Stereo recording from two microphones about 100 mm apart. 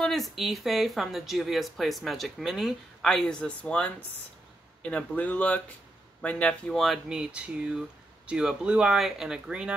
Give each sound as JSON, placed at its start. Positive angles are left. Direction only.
{"t": 0.0, "sound": "speech", "side_deg": 0}
{"t": 6.8, "sound": "speech", "side_deg": -5}